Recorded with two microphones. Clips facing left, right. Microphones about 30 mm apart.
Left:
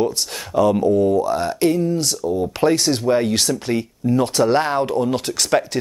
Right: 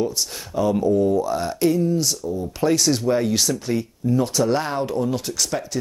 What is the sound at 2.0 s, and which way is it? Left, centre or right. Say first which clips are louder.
Speech: left 3 dB; left.